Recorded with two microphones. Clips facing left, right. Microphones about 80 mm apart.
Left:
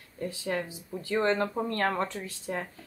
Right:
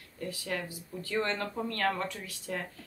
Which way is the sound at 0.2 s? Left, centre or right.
Left.